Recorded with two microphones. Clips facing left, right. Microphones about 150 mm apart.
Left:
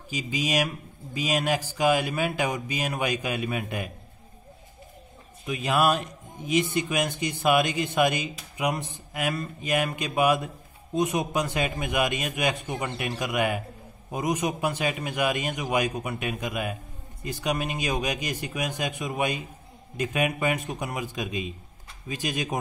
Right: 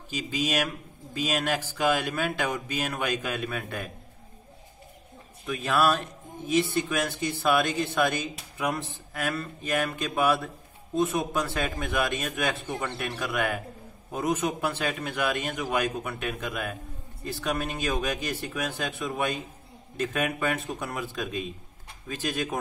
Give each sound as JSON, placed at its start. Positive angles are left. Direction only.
{"t": 0.1, "sound": "speech", "side_deg": 10}
{"t": 5.5, "sound": "speech", "side_deg": 15}